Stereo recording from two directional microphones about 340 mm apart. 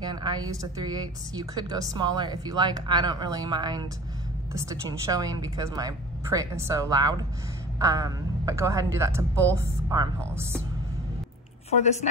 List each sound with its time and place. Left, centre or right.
0.0 s a woman's voice: centre
11.7 s speech: centre